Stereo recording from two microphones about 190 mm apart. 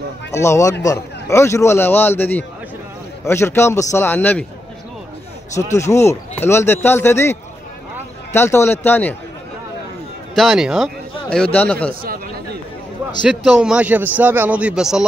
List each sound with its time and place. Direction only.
0.3 s speech: 15° left (ahead or behind)
5.8 s speech: 15° left (ahead or behind)
10.3 s speech: centre (ahead or behind)
11.9 s speech: 50° right (ahead or behind)
13.2 s a man's voice: 5° right (ahead or behind)